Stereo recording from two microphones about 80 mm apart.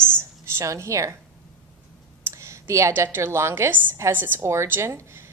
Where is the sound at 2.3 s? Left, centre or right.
Right.